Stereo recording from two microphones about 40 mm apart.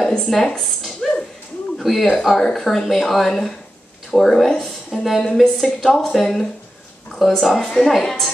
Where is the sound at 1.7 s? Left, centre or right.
Centre.